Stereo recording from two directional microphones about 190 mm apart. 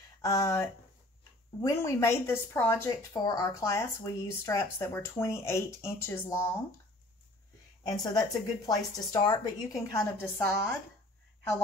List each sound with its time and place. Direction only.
0.2 s a woman's voice: 20° left (ahead or behind)
7.8 s a woman's voice: 20° left (ahead or behind)